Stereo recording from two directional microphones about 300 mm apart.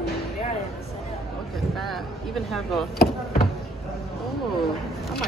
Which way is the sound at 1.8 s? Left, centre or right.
Centre.